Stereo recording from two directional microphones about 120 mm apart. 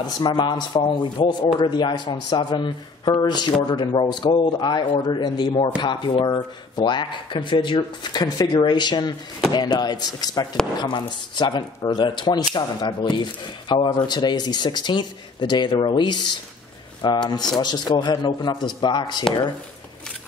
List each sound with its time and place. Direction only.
0.0 s speech: 40° left (ahead or behind)